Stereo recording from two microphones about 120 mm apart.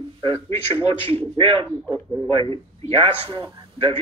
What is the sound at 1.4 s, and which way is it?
Speech, 55° right (ahead or behind).